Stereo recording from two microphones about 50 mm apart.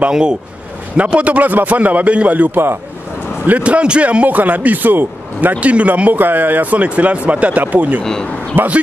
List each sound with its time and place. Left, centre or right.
0.1 s a man's voice: centre
2.5 s speech: right
3.4 s a man's voice: right
5.6 s a man's voice: right
6.1 s a man's voice: right
8.0 s speech: centre
8.6 s a man's voice: right